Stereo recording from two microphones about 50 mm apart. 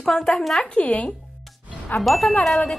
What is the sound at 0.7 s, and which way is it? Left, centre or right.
Speech, left.